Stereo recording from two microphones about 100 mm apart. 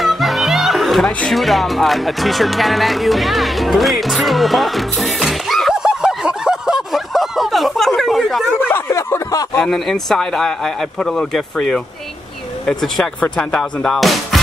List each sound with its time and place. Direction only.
0.0 s music: centre (ahead or behind)
8.5 s a sound: 20° left (ahead or behind)
9.6 s speech: 5° left (ahead or behind)